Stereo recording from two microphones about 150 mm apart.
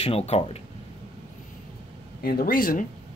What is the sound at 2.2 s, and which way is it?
Speech, 75° left (ahead or behind).